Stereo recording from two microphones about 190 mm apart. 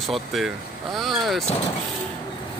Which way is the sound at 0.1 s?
Centre (ahead or behind).